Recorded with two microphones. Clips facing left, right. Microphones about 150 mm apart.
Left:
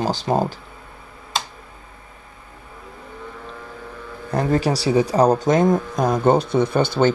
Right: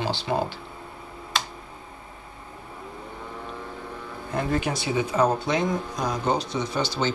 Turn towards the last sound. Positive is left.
turn(degrees=55)  # may be behind; listen again after turning